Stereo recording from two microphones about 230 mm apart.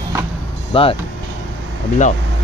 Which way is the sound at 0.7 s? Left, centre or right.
Left.